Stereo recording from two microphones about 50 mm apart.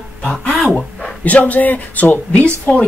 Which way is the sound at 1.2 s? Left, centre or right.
Left.